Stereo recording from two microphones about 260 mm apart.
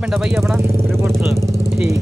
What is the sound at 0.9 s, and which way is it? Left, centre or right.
Vehicle, centre.